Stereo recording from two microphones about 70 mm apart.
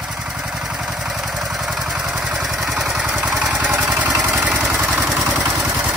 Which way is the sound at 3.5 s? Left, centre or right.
Centre.